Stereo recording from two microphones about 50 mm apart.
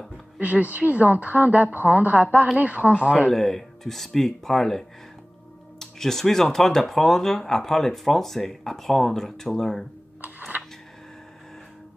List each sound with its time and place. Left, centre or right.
0.4 s a woman's voice: right
3.3 s speech: centre
10.2 s a sound: right